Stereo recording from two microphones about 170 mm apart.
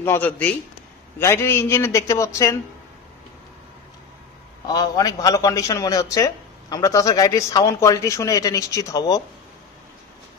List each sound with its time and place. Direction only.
0.0 s a man's voice: 10° left (ahead or behind)
4.6 s a man's voice: 20° left (ahead or behind)